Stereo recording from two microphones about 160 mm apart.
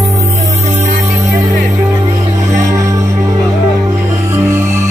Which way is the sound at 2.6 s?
20° right (ahead or behind).